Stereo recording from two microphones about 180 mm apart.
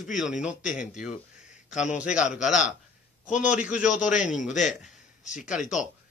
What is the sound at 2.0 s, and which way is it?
Speech, 5° right (ahead or behind).